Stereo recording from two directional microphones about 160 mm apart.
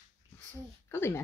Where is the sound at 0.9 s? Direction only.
15° left (ahead or behind).